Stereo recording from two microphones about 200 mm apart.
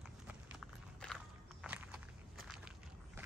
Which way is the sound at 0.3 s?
5° right (ahead or behind).